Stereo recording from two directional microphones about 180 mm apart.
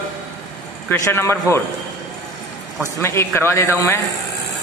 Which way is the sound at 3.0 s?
15° left (ahead or behind).